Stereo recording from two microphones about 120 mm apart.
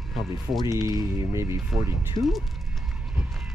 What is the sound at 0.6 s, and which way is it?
Speech, 30° right (ahead or behind).